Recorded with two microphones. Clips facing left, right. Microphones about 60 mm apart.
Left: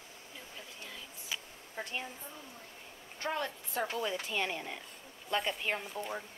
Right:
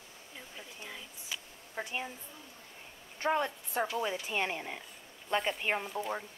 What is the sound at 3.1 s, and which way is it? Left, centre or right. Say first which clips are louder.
A woman's voice: right 5 dB; right.